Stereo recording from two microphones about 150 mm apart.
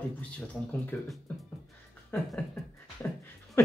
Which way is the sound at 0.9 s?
10° left (ahead or behind).